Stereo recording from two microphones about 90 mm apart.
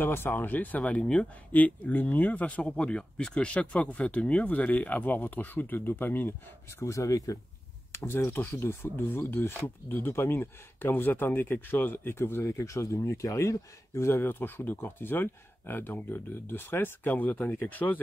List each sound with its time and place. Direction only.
0.0 s speech: 25° left (ahead or behind)
6.8 s speech: 35° left (ahead or behind); by 18.0 s 20° left (ahead or behind)